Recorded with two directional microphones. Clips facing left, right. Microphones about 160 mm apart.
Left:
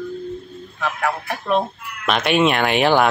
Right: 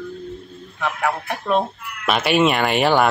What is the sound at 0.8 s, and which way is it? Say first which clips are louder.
A woman's voice: even; 10° right (ahead or behind).